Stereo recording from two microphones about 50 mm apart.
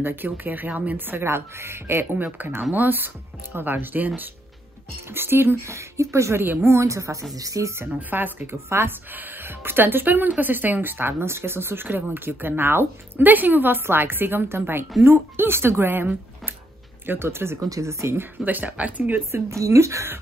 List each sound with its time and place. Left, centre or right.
0.0 s speech: right
1.2 s speech: right
2.1 s speech: right
5.1 s speech: right
5.6 s speech: right
6.4 s speech: right
6.7 s a woman's voice: right
7.9 s speech: right
17.0 s speech: right
18.4 s speech: right
19.3 s speech: right